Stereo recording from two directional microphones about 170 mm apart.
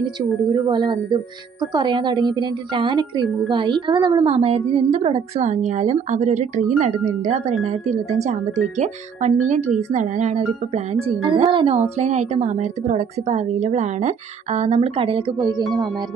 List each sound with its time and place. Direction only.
0.0 s a woman's voice: 25° right (ahead or behind); by 6.7 s 45° right (ahead or behind)
7.9 s a woman's voice: 45° right (ahead or behind)